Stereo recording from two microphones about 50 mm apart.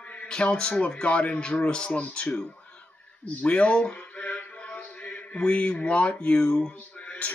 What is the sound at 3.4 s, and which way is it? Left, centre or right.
Speech, left.